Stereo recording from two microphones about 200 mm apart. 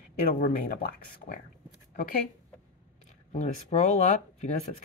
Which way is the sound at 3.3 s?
35° left (ahead or behind).